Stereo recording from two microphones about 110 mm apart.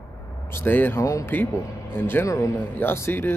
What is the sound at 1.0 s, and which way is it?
Speech, 30° left (ahead or behind).